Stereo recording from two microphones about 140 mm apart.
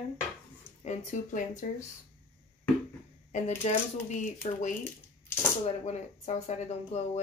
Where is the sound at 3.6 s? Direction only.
50° left (ahead or behind).